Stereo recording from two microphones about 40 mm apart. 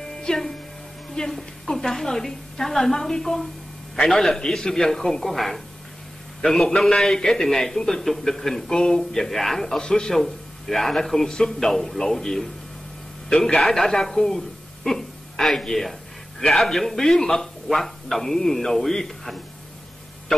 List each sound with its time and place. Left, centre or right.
0.0 s music: centre
1.1 s a man's voice: centre